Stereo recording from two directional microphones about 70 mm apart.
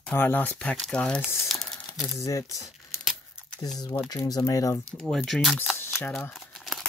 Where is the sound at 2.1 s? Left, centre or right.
Left.